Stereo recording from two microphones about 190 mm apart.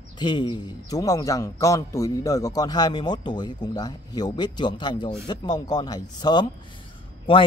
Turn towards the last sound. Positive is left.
turn(degrees=30)  # may be behind; listen again after turning